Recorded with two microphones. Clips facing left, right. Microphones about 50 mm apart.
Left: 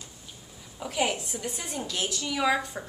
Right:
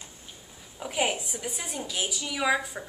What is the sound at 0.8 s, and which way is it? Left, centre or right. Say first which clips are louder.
A woman's voice: even; centre.